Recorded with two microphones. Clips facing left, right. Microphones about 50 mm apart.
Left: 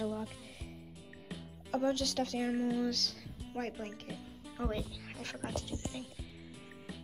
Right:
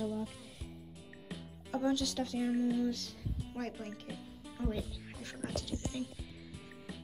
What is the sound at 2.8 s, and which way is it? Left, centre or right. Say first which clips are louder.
Music: even; left.